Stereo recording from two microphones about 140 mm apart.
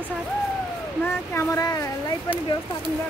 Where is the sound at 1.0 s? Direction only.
15° left (ahead or behind).